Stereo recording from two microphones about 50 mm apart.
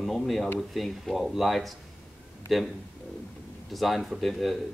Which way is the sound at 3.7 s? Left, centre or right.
Centre.